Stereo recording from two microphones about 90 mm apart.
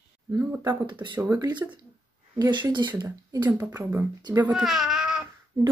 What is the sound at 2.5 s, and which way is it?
Speech, 60° right (ahead or behind).